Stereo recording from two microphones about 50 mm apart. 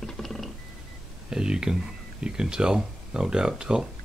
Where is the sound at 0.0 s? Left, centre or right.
Centre.